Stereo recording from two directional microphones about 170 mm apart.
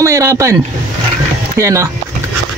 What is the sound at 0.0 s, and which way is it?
Speech, 20° right (ahead or behind).